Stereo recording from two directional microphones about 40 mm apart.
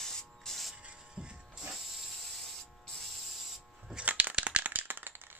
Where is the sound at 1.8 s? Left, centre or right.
Centre.